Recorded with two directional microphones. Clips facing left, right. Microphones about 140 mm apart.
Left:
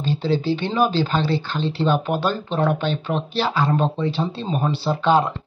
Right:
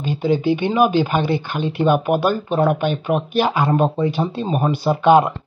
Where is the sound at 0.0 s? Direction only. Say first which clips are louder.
Right 3 dB; 15° right (ahead or behind).